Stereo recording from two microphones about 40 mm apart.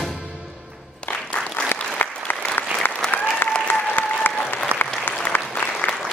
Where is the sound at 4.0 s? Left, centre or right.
Left.